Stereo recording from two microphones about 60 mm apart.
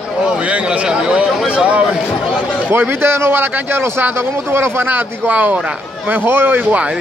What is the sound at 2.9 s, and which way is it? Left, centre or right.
Speech, right.